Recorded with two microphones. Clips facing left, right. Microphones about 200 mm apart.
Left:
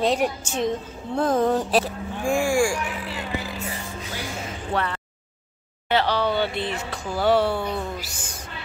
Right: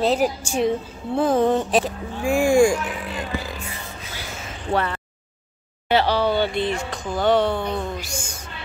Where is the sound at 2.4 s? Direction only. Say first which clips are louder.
Right 8 dB; 20° right (ahead or behind).